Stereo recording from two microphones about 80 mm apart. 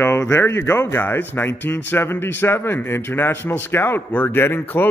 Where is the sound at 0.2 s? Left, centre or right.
Left.